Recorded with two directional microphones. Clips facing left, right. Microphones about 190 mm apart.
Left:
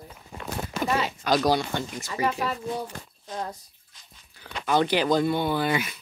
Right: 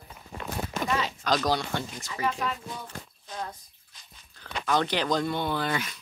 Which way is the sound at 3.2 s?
40° left (ahead or behind).